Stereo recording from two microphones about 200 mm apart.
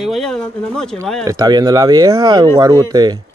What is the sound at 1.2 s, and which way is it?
A man's voice, 20° right (ahead or behind).